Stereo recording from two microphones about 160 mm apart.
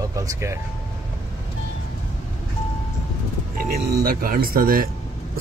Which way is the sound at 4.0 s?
70° right (ahead or behind).